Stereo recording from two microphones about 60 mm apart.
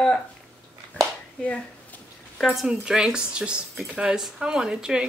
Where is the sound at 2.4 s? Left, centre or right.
Centre.